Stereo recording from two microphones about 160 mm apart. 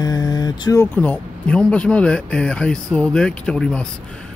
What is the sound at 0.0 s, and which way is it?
Vehicle, 25° left (ahead or behind).